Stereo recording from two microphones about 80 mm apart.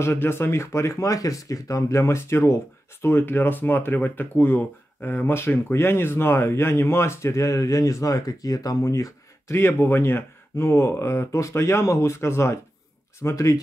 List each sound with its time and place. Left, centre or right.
0.0 s speech: left